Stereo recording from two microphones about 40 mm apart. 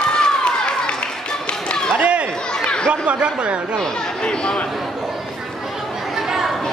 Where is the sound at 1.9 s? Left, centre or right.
Right.